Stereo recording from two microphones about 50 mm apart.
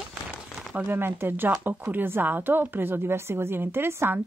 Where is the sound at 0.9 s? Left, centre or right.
Right.